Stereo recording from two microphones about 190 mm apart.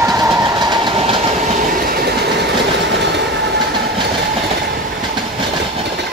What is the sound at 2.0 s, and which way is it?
Train, 60° right (ahead or behind).